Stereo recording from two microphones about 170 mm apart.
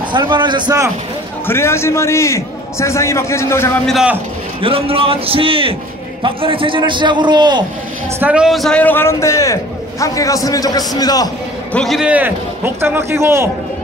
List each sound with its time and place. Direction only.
0.1 s a man's voice: 25° right (ahead or behind)
1.5 s a man's voice: 15° left (ahead or behind)
3.8 s a man's voice: 5° right (ahead or behind)
4.6 s a man's voice: 35° right (ahead or behind)
8.2 s a man's voice: 5° right (ahead or behind); by 11.2 s 20° left (ahead or behind)
11.7 s a man's voice: centre (ahead or behind); by 13.5 s 15° right (ahead or behind)